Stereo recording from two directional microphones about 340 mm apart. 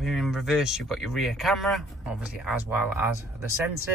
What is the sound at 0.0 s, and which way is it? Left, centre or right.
Speech, centre.